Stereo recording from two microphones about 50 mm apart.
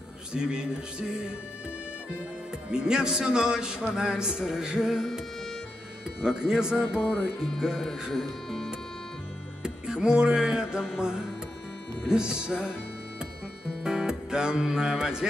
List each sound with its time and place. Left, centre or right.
0.3 s music: centre
2.7 s music: centre
6.2 s music: centre
7.5 s speech: centre
9.6 s music: centre
13.8 s music: centre